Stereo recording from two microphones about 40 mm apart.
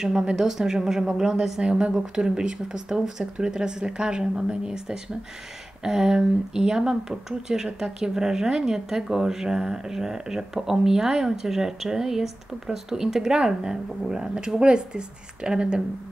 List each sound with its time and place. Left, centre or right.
0.4 s speech: centre; by 2.0 s right
2.0 s speech: centre